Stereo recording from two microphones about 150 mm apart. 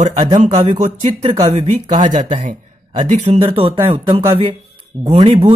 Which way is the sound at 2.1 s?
55° right (ahead or behind).